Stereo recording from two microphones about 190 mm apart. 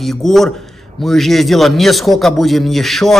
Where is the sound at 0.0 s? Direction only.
Centre (ahead or behind).